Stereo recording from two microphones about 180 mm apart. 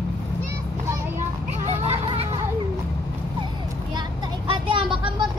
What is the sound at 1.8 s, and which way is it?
Children playing, 35° right (ahead or behind).